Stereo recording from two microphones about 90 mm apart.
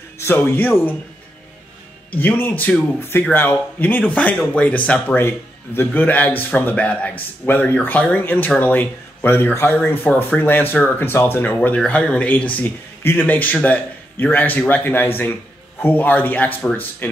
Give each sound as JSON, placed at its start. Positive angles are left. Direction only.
{"t": 0.2, "sound": "a man's voice", "side_deg": 25}
{"t": 2.1, "sound": "a man's voice", "side_deg": 20}